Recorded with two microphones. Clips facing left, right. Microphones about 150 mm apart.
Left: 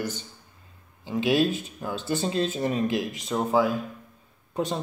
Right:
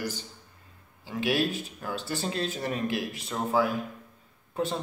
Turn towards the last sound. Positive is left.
turn(degrees=15)  # may be behind; listen again after turning